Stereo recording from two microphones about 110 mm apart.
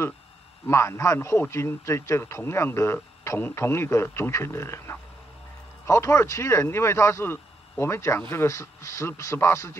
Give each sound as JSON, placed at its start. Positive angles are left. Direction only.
{"t": 0.7, "sound": "a man's voice", "side_deg": 25}